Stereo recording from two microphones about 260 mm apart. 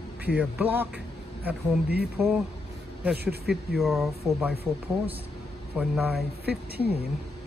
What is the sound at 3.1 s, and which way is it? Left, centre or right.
Speech, right.